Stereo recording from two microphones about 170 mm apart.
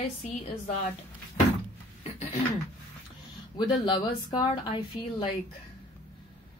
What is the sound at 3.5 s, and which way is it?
Speech, 30° left (ahead or behind).